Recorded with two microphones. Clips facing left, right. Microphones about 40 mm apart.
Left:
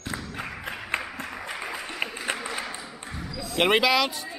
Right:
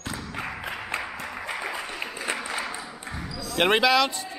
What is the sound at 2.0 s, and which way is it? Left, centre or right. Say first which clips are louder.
Applause: left 3 dB; left.